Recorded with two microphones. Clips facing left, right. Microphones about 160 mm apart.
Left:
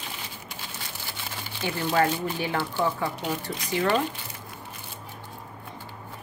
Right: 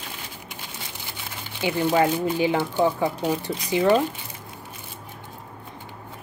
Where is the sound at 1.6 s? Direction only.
15° right (ahead or behind).